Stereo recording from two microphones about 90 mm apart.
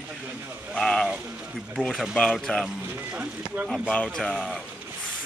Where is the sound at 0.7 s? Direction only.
5° left (ahead or behind).